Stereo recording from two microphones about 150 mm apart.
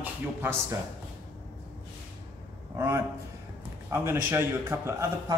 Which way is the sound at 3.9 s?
15° right (ahead or behind).